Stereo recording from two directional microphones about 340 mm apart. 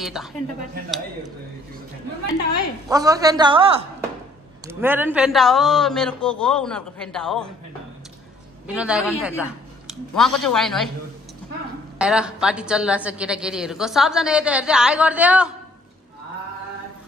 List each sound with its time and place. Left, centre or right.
0.0 s a woman's voice: centre
2.9 s a man's voice: centre
8.6 s a woman's voice: centre
12.0 s a woman's voice: centre